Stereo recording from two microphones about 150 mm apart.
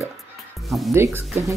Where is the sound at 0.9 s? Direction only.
15° right (ahead or behind).